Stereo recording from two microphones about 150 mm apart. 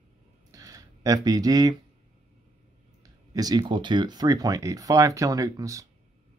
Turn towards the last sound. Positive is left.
turn(degrees=-20)  # may be behind; listen again after turning